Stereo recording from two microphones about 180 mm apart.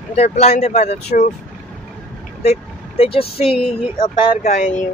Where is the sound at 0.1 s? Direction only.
35° left (ahead or behind).